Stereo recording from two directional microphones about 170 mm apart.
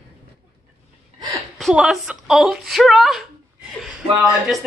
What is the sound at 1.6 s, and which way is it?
A woman's voice, centre (ahead or behind).